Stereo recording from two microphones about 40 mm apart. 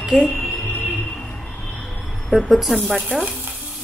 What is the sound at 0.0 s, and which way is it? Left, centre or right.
Speech, centre.